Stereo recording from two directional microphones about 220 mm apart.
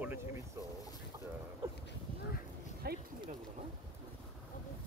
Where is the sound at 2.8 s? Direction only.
45° right (ahead or behind).